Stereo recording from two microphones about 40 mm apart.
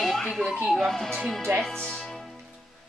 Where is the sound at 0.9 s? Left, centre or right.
Centre.